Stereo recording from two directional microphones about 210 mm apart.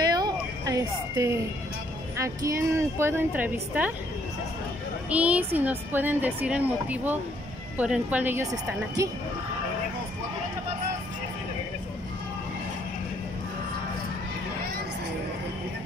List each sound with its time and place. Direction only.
0.1 s a sound: 15° right (ahead or behind)
2.1 s speech: 15° right (ahead or behind)
5.1 s speech: 5° right (ahead or behind)